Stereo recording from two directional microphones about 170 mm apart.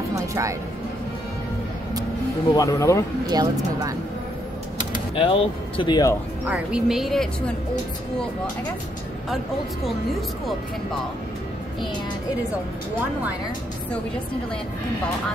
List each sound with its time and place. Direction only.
0.1 s music: 20° right (ahead or behind)
2.5 s speech: 20° left (ahead or behind)
3.3 s speech: 20° right (ahead or behind)
5.1 s speech: 30° left (ahead or behind)
6.4 s speech: 5° right (ahead or behind)